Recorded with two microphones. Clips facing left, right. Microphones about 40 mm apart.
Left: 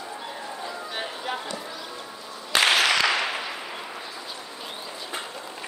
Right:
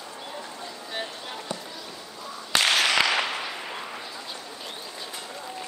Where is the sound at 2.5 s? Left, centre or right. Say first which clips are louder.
Left 2 dB; centre.